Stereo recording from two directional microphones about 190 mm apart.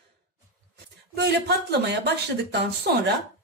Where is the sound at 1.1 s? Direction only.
60° right (ahead or behind).